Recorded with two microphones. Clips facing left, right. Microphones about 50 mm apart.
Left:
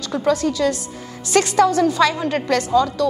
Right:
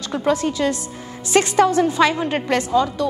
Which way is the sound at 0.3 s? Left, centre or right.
Right.